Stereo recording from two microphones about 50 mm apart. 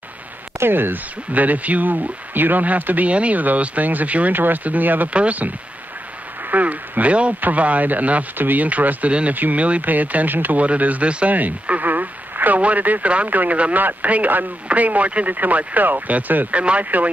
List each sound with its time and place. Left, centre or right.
0.6 s speech: right
6.5 s speech: right
10.6 s speech: right